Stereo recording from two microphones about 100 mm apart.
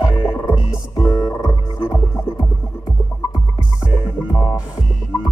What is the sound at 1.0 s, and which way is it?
Music, 45° left (ahead or behind).